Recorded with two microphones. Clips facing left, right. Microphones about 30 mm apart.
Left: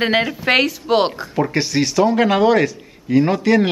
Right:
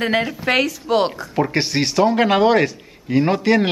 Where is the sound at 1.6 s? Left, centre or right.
Centre.